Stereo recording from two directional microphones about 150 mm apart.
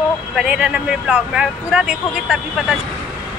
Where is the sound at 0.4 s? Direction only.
5° right (ahead or behind).